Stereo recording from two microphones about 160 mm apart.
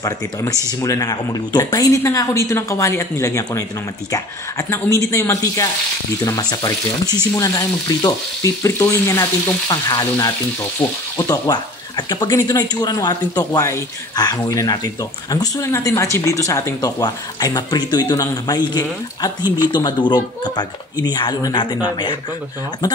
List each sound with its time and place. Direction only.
0.0 s speech: 20° left (ahead or behind)